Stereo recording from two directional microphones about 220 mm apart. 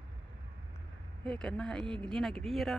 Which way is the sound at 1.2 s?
5° left (ahead or behind).